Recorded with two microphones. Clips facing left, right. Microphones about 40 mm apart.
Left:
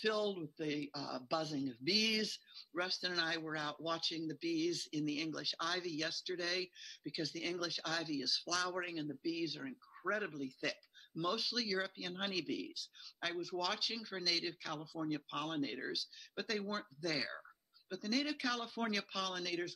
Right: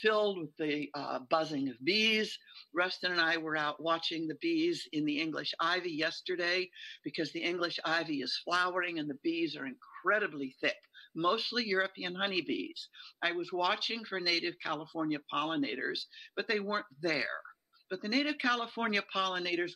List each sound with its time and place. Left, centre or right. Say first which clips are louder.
0.0 s speech: right 7 dB; right
15.6 s speech: right 6 dB; right